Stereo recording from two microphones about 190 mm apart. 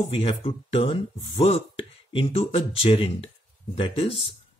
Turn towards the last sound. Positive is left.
turn(degrees=30)  # may be behind; listen again after turning